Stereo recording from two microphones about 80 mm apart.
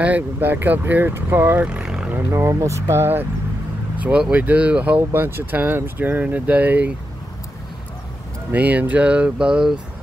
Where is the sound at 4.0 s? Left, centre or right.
Centre.